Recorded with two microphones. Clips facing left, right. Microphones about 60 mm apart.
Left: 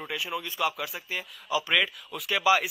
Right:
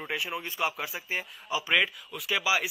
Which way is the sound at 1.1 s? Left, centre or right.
Right.